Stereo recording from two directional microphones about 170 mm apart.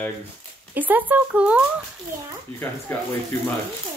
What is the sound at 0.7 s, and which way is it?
Speech, 10° right (ahead or behind).